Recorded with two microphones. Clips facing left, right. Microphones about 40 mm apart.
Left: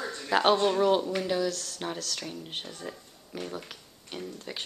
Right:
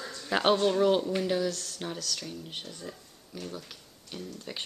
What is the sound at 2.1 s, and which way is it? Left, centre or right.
Speech, left.